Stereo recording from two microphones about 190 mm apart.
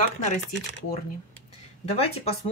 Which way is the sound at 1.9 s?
30° left (ahead or behind).